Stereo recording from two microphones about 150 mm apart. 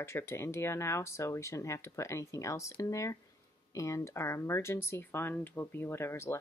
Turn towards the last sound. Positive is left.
turn(degrees=15)  # may be behind; listen again after turning